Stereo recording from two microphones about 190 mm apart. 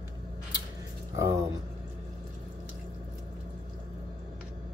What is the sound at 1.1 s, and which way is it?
Speech, 15° right (ahead or behind).